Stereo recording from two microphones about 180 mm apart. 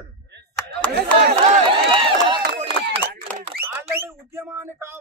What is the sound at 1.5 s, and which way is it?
Run, 30° right (ahead or behind).